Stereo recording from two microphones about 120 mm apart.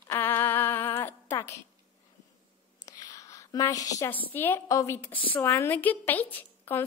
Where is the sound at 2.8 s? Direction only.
30° left (ahead or behind).